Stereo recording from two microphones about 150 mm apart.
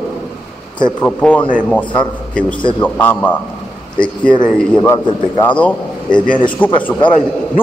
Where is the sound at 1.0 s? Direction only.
10° left (ahead or behind).